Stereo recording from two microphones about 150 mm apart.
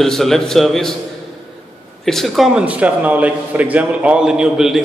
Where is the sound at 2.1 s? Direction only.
Centre (ahead or behind).